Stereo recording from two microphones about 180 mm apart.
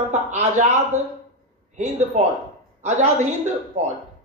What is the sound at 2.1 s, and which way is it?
Speech, 40° right (ahead or behind).